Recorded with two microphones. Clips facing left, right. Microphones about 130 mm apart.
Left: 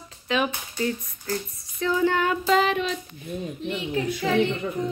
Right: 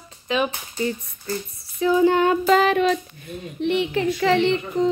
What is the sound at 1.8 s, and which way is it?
Speech, 15° right (ahead or behind).